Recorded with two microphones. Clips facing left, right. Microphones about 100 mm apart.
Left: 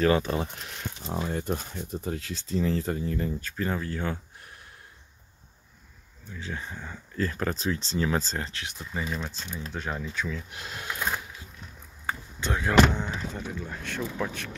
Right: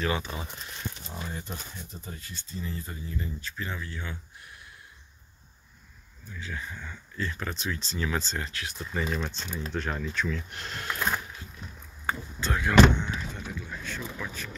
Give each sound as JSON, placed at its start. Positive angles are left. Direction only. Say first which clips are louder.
{"t": 0.0, "sound": "speech", "louder": "left 7 dB", "side_deg": 45}
{"t": 6.4, "sound": "speech", "louder": "left 2 dB", "side_deg": 30}
{"t": 8.9, "sound": "speech", "louder": "right 2 dB", "side_deg": 10}
{"t": 12.4, "sound": "speech", "louder": "left 2 dB", "side_deg": 20}
{"t": 12.9, "sound": "speech", "louder": "left 1 dB", "side_deg": 35}
{"t": 13.7, "sound": "speech", "louder": "left 4 dB", "side_deg": 60}